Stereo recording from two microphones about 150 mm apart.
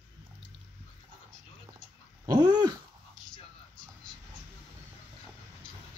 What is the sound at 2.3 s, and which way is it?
Dog, 25° right (ahead or behind).